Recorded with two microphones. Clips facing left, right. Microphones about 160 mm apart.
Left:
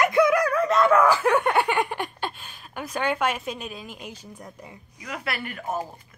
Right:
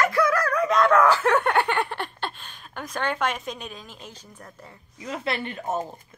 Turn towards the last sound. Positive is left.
turn(degrees=-25)  # may be behind; listen again after turning